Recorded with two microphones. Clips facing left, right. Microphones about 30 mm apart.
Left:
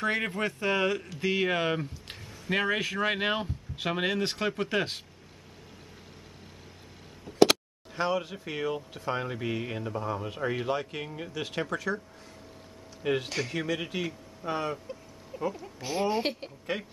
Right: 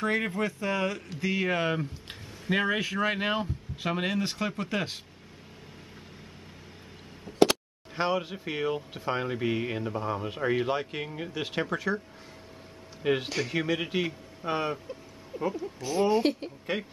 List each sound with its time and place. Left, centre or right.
0.0 s speech: centre
0.4 s a man's voice: left
1.5 s speech: centre
3.0 s speech: centre
7.9 s speech: centre
13.0 s speech: centre
14.9 s a sound: centre
16.0 s speech: centre